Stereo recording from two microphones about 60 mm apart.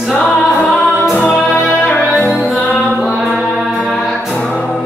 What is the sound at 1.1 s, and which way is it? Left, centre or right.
Music, centre.